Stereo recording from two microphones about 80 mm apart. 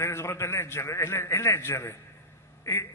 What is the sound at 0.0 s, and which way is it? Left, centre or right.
A man's voice, left.